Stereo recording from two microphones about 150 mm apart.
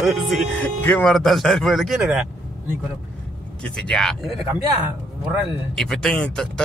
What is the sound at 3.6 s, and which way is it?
Speech, 5° left (ahead or behind).